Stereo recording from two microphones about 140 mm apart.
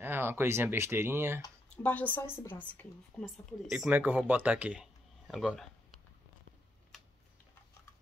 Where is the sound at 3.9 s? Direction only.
10° right (ahead or behind).